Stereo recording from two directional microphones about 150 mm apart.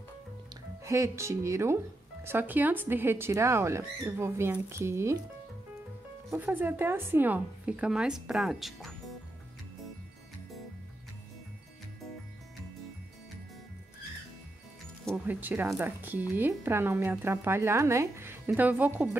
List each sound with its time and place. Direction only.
0.8 s speech: 20° right (ahead or behind)
6.3 s speech: 15° right (ahead or behind)
15.2 s speech: 10° right (ahead or behind)